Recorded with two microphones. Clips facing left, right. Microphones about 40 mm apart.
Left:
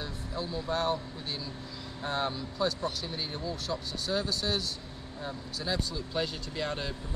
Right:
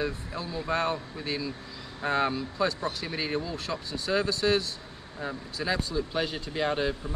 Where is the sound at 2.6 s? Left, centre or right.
Right.